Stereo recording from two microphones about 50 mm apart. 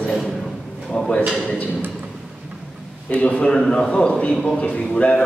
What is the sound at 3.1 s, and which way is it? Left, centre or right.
Speech, left.